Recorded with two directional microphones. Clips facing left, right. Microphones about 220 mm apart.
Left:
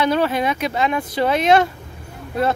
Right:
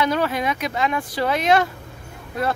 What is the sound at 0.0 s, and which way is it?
Speech, 30° left (ahead or behind).